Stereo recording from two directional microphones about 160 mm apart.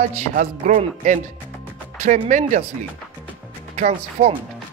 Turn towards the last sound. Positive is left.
turn(degrees=-50)  # may be behind; listen again after turning